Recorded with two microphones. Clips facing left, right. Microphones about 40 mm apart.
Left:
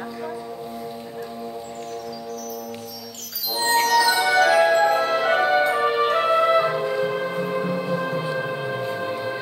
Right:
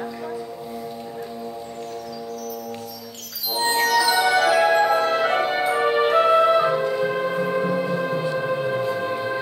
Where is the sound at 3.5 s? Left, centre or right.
Centre.